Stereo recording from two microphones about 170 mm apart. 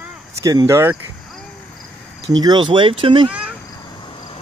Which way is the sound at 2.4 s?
25° right (ahead or behind).